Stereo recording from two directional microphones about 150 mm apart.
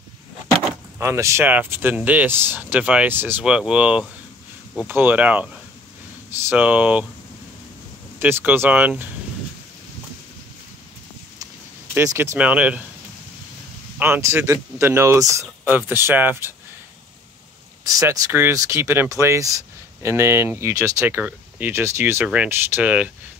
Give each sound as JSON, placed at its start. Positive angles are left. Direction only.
{"t": 0.9, "sound": "speech", "side_deg": -20}
{"t": 8.2, "sound": "speech", "side_deg": -15}
{"t": 11.9, "sound": "speech", "side_deg": -15}
{"t": 13.9, "sound": "speech", "side_deg": -15}
{"t": 17.8, "sound": "speech", "side_deg": -20}